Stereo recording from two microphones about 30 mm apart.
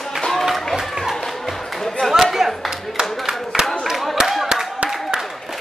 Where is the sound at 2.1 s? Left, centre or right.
Centre.